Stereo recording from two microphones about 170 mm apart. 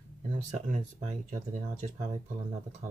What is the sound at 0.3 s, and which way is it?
Speech, 50° right (ahead or behind).